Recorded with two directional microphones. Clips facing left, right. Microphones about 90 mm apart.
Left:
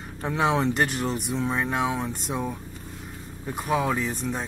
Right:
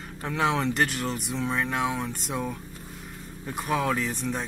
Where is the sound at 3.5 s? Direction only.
5° left (ahead or behind).